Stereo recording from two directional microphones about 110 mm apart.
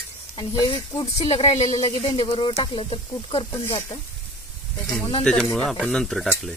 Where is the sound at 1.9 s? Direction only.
55° left (ahead or behind).